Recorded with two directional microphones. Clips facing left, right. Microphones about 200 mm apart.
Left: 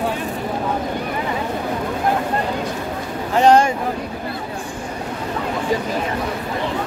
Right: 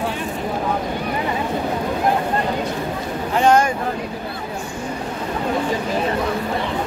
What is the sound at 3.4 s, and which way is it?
Speech, 35° left (ahead or behind).